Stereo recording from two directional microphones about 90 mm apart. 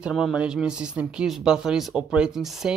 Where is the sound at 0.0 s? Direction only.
10° right (ahead or behind).